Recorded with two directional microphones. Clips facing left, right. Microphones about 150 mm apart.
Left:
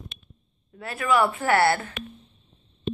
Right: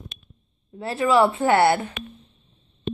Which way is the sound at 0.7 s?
25° right (ahead or behind).